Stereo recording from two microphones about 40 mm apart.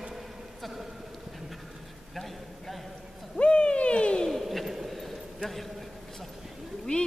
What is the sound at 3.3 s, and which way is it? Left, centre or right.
Hoot, left.